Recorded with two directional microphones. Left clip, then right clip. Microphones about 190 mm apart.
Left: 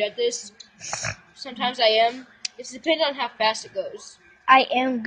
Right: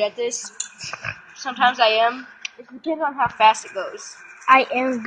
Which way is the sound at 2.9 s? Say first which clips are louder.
Even; 20° left (ahead or behind).